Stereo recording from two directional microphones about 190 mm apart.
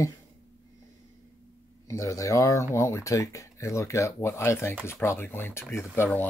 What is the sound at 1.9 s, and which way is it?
Speech, 15° left (ahead or behind).